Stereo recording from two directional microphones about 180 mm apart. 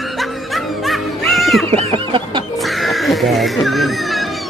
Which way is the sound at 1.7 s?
30° right (ahead or behind).